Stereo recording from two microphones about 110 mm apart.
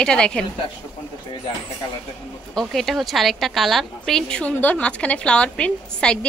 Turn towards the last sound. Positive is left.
turn(degrees=10)  # may be behind; listen again after turning